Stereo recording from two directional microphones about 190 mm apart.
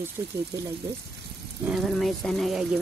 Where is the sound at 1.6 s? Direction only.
Centre (ahead or behind).